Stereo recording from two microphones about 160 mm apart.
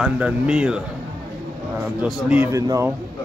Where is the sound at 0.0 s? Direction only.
5° right (ahead or behind).